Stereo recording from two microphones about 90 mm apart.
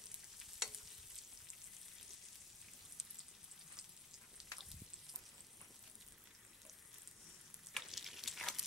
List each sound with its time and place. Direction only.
0.4 s stir: 5° right (ahead or behind)
4.4 s frying: 5° right (ahead or behind)
7.7 s stir: centre (ahead or behind)